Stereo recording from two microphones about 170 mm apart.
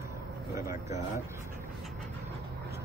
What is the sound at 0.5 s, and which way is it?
Speech, 20° right (ahead or behind).